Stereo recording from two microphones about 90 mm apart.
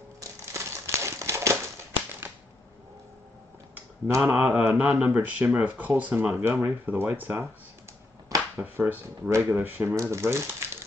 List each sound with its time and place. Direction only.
0.5 s crumpling: 30° right (ahead or behind)
4.2 s speech: 15° right (ahead or behind)
8.5 s speech: 25° right (ahead or behind)